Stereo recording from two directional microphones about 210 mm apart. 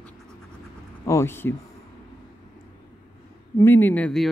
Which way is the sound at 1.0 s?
10° left (ahead or behind).